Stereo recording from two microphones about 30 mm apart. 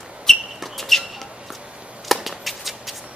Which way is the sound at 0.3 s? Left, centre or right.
Centre.